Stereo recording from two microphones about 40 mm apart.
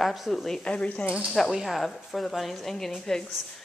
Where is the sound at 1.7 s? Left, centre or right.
Centre.